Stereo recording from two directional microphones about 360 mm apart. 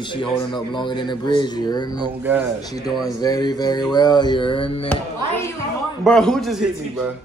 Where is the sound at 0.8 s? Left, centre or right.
Centre.